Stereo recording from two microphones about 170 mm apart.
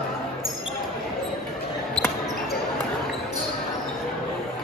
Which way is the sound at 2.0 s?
25° right (ahead or behind).